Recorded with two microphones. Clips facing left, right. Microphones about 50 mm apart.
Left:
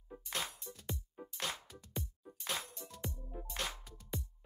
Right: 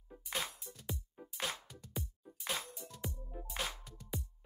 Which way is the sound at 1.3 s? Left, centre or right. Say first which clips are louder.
Right 1 dB; centre.